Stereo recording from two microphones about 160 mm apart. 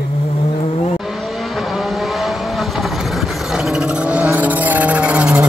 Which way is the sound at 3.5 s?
5° right (ahead or behind).